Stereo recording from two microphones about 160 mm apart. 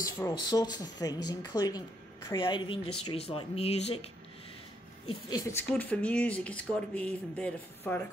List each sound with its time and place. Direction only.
0.0 s speech: 25° left (ahead or behind); by 4.0 s 40° left (ahead or behind)
5.3 s speech: 20° left (ahead or behind)